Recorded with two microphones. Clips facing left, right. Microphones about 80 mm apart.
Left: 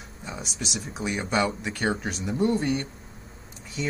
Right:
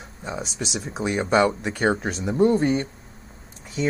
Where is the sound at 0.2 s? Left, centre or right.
Right.